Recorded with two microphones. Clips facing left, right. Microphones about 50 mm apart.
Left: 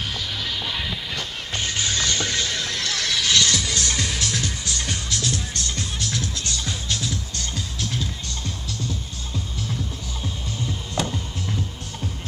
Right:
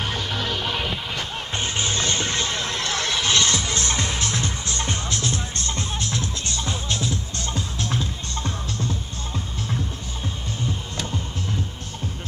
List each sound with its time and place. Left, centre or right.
1.1 s music: right